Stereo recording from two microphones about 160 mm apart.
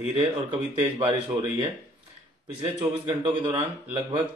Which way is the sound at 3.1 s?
35° right (ahead or behind).